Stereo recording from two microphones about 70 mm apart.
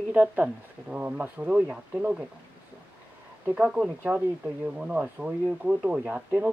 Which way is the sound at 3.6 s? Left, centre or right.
Centre.